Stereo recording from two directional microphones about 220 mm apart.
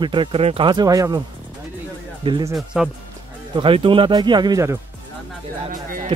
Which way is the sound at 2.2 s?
20° right (ahead or behind).